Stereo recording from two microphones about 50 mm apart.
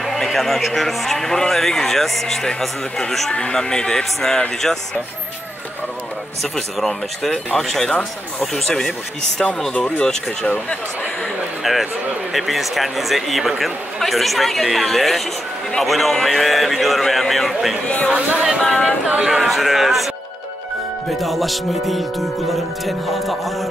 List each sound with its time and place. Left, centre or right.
0.0 s a man's voice: centre
3.3 s speech: centre
6.4 s speech: centre
9.7 s speech: left
11.6 s a man's voice: centre
17.8 s speech: left
18.1 s speech: right
18.6 s speech: centre
19.2 s a man's voice: centre
21.2 s a man's voice: centre